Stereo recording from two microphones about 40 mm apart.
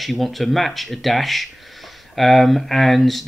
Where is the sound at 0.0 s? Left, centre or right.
Centre.